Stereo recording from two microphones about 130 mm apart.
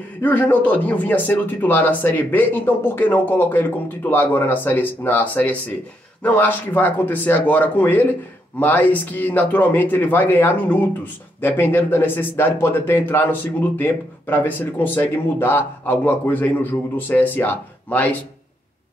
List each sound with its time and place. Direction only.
0.2 s speech: 15° left (ahead or behind)